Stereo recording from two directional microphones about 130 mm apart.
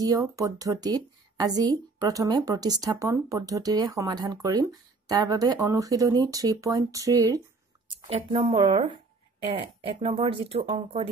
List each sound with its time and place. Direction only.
0.0 s a woman's voice: 25° right (ahead or behind)
8.5 s speech: 40° right (ahead or behind)